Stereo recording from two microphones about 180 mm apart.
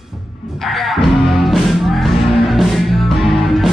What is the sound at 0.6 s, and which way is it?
Music, centre (ahead or behind).